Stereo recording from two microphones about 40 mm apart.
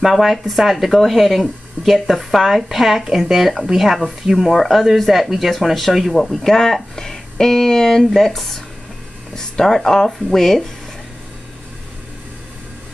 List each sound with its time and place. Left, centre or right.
0.0 s speech: centre
6.4 s speech: centre